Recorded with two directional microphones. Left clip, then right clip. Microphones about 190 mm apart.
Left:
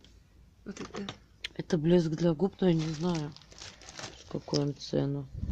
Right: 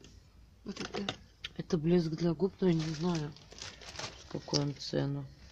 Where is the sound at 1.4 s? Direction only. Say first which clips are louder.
Left 4 dB; 50° left (ahead or behind).